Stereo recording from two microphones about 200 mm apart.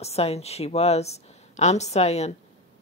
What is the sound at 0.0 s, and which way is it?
A woman's voice, 30° left (ahead or behind).